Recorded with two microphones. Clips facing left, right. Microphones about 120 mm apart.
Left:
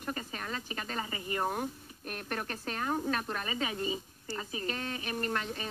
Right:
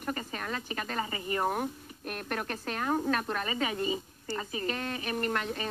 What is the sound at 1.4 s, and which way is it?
Speech, 10° right (ahead or behind).